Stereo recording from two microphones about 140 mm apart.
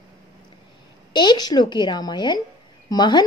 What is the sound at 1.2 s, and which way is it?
A woman's voice, 30° left (ahead or behind).